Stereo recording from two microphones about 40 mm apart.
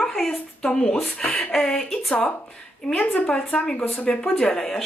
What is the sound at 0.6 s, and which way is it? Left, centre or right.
Speech, left.